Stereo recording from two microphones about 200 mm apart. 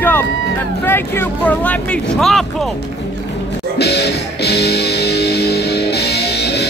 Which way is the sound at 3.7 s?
55° left (ahead or behind).